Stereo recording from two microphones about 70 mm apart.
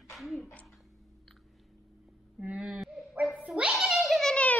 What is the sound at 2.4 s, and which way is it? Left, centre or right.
Whimper, centre.